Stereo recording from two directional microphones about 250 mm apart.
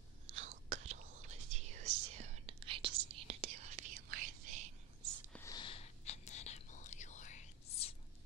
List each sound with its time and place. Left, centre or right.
0.3 s whispering: right
5.3 s whispering: centre